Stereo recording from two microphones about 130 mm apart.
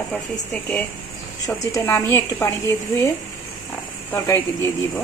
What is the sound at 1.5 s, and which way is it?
Speech, 20° left (ahead or behind).